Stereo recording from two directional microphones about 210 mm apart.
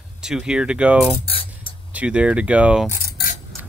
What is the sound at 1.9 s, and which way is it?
Speech, 5° right (ahead or behind).